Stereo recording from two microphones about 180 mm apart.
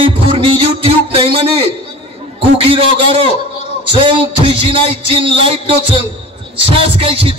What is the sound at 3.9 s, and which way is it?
Music, 30° right (ahead or behind).